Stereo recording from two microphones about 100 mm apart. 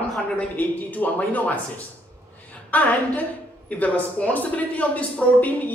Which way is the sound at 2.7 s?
15° left (ahead or behind).